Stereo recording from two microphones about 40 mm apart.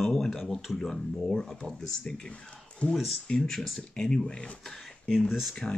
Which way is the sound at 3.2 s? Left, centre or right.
Centre.